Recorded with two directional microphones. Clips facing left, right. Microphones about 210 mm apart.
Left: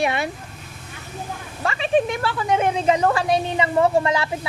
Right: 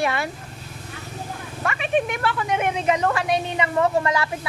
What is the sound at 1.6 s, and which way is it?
Speech, 30° left (ahead or behind).